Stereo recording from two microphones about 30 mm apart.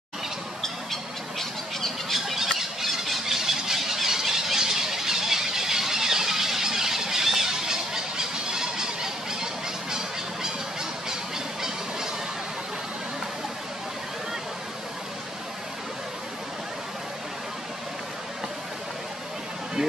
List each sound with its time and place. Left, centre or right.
1.4 s bird: centre
2.1 s squeal: centre